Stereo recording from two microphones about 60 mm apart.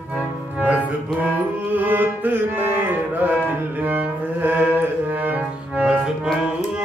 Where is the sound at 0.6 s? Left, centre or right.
Right.